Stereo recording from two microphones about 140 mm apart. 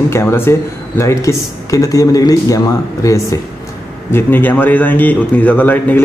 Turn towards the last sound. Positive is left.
turn(degrees=15)  # may be behind; listen again after turning